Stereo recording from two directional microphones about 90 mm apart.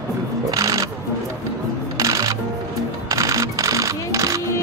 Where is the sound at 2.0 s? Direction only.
40° right (ahead or behind).